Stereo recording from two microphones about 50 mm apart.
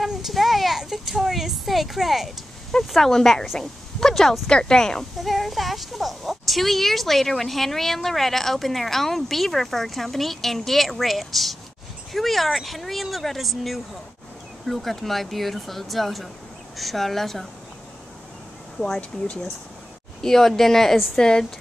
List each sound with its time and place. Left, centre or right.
0.0 s speech: centre
2.9 s speech: centre
5.1 s speech: centre
18.9 s speech: left
20.2 s speech: centre
21.2 s speech: centre